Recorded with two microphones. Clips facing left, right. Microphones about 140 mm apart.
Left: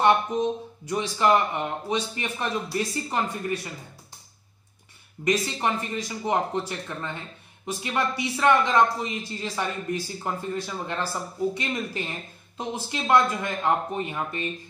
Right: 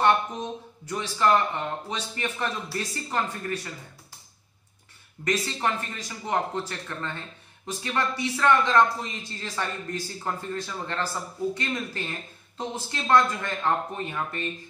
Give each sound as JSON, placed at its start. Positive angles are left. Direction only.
{"t": 0.8, "sound": "speech", "side_deg": 15}
{"t": 5.2, "sound": "speech", "side_deg": 15}